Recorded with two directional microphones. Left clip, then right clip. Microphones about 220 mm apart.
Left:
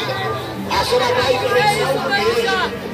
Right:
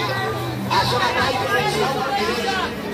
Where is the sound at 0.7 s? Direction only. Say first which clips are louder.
Left 3 dB; 40° left (ahead or behind).